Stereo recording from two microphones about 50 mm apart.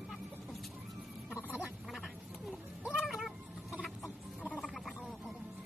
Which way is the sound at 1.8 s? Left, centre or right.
Centre.